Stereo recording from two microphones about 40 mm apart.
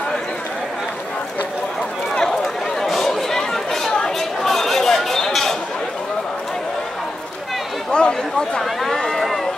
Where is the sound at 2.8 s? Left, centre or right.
Centre.